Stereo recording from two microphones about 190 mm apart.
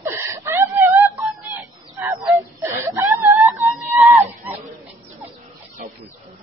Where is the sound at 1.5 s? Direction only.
15° right (ahead or behind).